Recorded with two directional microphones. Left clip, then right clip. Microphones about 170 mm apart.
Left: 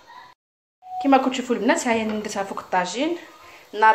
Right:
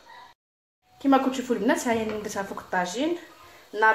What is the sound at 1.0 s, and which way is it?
Speech, 15° left (ahead or behind).